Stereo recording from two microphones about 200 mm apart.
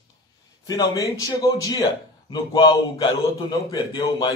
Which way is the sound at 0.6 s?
20° left (ahead or behind).